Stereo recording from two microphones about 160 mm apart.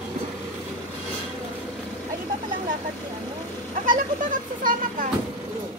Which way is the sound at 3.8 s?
55° right (ahead or behind).